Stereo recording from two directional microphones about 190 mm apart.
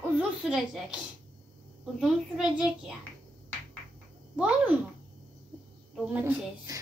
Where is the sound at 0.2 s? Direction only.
Centre (ahead or behind).